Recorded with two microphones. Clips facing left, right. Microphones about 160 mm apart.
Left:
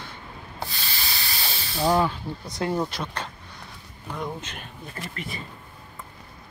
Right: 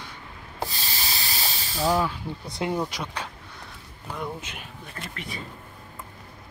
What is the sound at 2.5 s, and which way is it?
Speech, 20° right (ahead or behind).